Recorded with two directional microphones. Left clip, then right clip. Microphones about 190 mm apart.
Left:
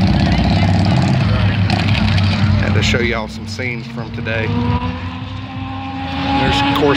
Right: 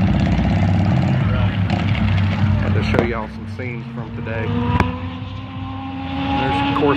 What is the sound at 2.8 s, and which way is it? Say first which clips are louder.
Speech: left 2 dB; 10° left (ahead or behind).